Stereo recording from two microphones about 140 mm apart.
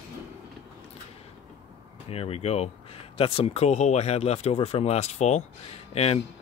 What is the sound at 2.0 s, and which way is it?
Speech, 45° left (ahead or behind).